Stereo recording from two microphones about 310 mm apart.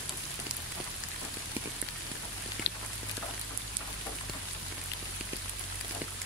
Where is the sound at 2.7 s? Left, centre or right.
Left.